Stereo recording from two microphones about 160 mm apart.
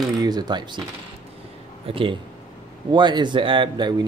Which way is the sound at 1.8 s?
35° right (ahead or behind).